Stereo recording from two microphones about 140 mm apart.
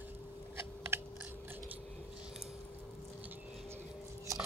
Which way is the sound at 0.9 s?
15° right (ahead or behind).